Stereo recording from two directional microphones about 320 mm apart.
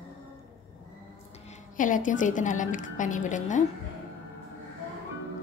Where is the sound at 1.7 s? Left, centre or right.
Left.